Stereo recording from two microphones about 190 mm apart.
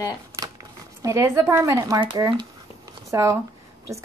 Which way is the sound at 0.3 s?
15° right (ahead or behind).